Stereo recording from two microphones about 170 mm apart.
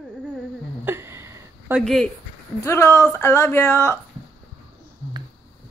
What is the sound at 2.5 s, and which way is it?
Speech, 15° left (ahead or behind).